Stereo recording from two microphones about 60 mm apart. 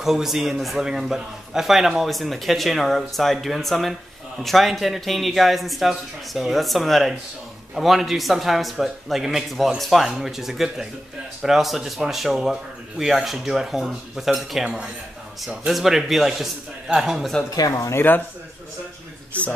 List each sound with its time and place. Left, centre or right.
0.0 s a man's voice: centre
14.6 s speech: centre
15.7 s a man's voice: centre
17.6 s speech: left
17.9 s a man's voice: left